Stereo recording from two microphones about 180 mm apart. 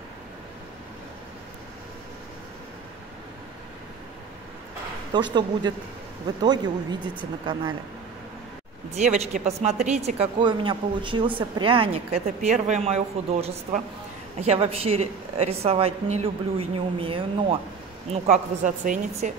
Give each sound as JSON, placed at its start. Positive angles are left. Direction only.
{"t": 5.1, "sound": "speech", "side_deg": -25}
{"t": 8.9, "sound": "a woman's voice", "side_deg": -40}
{"t": 12.4, "sound": "a woman's voice", "side_deg": -40}